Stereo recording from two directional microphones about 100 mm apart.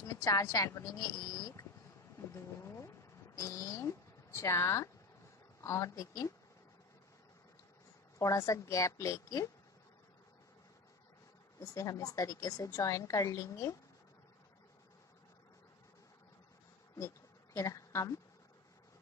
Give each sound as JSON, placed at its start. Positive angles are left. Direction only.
{"t": 0.0, "sound": "a woman's voice", "side_deg": 35}
{"t": 2.3, "sound": "a sound", "side_deg": 30}
{"t": 3.3, "sound": "a woman's voice", "side_deg": 30}
{"t": 8.2, "sound": "a woman's voice", "side_deg": 30}
{"t": 11.6, "sound": "a woman's voice", "side_deg": 35}
{"t": 17.6, "sound": "a woman's voice", "side_deg": 30}